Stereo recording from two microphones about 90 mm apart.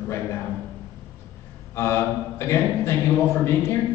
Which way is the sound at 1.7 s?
30° left (ahead or behind).